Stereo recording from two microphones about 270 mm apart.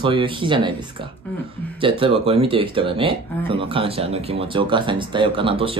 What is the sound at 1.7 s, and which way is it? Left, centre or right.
Speech, centre.